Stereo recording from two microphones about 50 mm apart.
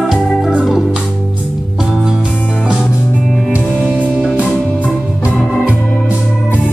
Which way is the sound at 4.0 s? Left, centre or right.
Centre.